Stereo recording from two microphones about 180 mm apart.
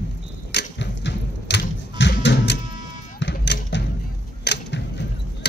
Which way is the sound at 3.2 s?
70° left (ahead or behind).